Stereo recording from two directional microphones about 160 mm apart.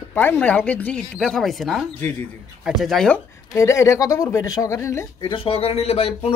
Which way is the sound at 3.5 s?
15° left (ahead or behind).